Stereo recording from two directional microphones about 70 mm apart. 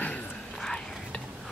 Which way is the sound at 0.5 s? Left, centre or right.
Centre.